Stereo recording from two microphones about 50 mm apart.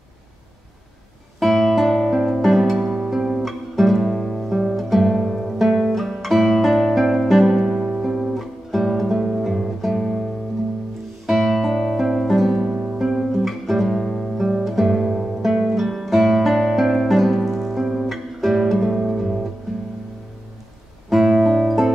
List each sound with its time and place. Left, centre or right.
1.4 s music: centre
12.7 s harp: right
13.0 s music: centre
14.4 s music: centre
21.1 s music: centre